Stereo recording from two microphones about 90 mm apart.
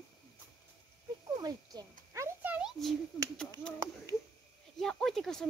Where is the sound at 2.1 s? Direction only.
35° right (ahead or behind).